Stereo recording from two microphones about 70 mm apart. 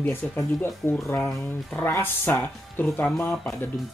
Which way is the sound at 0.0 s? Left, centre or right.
Left.